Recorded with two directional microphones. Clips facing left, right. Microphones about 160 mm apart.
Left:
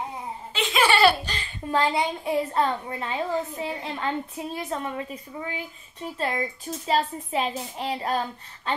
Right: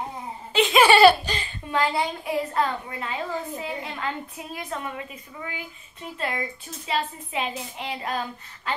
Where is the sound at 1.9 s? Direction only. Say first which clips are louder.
Left 1 dB; 25° left (ahead or behind).